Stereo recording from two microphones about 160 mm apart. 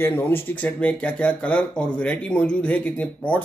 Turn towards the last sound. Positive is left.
turn(degrees=10)  # may be behind; listen again after turning